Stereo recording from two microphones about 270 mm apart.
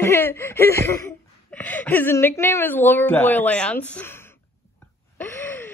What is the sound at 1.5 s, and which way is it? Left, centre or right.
A woman's voice, centre.